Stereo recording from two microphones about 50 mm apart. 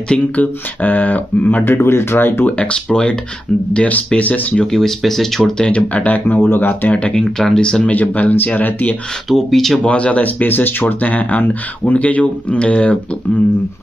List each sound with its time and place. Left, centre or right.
0.4 s speech: left
1.7 s speech: left
2.1 s speech: left
2.5 s speech: left
4.6 s speech: centre
5.6 s speech: left
6.9 s speech: left
7.8 s speech: left
9.3 s speech: centre
9.8 s speech: left